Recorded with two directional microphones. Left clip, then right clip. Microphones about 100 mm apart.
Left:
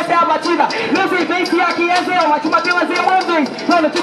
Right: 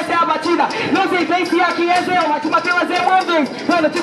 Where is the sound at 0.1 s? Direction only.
15° right (ahead or behind).